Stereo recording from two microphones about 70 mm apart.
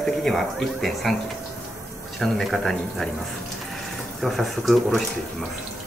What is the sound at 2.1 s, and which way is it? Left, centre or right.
Speech, centre.